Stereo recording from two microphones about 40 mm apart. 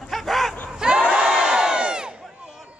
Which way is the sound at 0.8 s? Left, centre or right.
Right.